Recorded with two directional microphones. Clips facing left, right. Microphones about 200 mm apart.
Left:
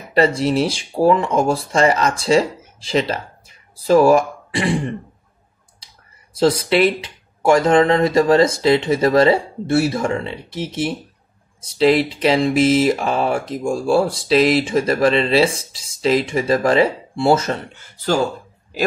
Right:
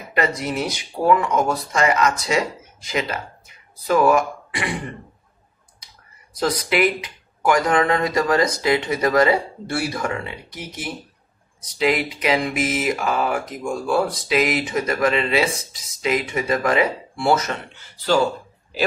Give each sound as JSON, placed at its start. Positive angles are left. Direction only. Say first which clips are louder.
{"t": 0.1, "sound": "speech", "louder": "left 7 dB", "side_deg": 30}
{"t": 6.3, "sound": "speech", "louder": "left 6 dB", "side_deg": 25}
{"t": 17.7, "sound": "speech", "louder": "right 2 dB", "side_deg": 50}